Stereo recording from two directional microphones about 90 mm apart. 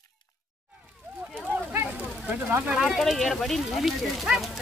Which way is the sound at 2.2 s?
15° right (ahead or behind).